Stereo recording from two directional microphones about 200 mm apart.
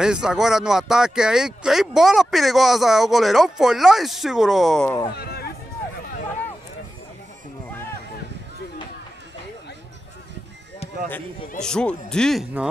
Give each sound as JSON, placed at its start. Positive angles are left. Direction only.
{"t": 0.0, "sound": "speech", "side_deg": -5}
{"t": 5.1, "sound": "a sound", "side_deg": 55}
{"t": 11.6, "sound": "speech", "side_deg": 5}